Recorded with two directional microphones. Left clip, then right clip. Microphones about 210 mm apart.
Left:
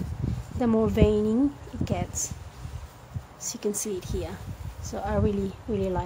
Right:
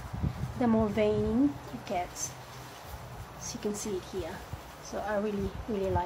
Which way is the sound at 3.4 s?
60° left (ahead or behind).